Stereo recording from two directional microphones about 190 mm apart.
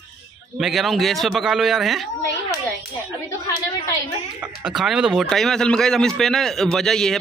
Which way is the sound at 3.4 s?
20° left (ahead or behind).